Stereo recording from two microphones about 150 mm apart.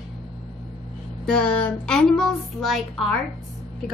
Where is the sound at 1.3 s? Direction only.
5° left (ahead or behind).